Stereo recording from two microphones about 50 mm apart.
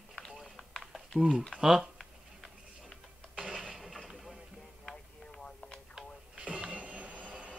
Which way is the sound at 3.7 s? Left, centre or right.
Centre.